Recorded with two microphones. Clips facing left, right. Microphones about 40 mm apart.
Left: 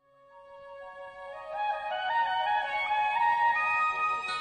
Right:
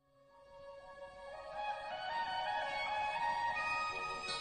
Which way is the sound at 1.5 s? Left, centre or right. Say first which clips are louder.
Left 11 dB; left.